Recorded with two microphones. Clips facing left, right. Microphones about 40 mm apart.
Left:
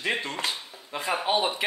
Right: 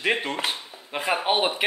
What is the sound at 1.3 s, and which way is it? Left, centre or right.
Speech, right.